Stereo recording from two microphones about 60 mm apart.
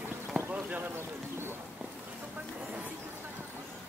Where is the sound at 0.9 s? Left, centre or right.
Right.